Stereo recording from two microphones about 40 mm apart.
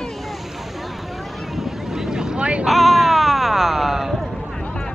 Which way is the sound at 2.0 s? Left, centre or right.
Centre.